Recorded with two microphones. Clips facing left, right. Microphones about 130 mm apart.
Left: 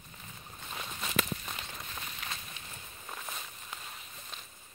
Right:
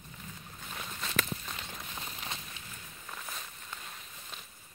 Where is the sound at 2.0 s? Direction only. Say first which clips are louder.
Right 1 dB; 25° right (ahead or behind).